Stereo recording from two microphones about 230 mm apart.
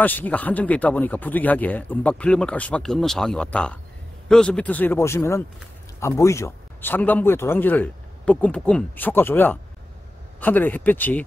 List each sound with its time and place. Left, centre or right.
0.0 s speech: centre